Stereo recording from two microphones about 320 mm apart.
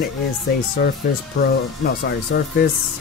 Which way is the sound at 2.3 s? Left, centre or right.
Left.